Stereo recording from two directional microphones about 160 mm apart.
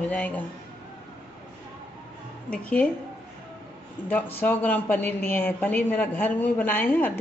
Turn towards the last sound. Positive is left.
turn(degrees=10)  # may be behind; listen again after turning